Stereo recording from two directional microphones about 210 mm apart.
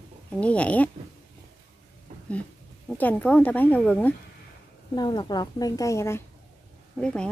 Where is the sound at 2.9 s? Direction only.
10° left (ahead or behind).